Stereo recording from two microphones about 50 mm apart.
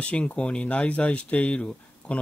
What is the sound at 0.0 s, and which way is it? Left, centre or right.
Speech, left.